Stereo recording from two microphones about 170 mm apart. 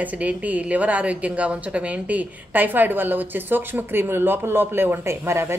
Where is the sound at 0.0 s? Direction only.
10° right (ahead or behind).